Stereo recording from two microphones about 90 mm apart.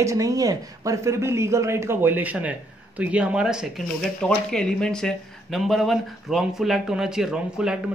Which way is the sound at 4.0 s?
5° left (ahead or behind).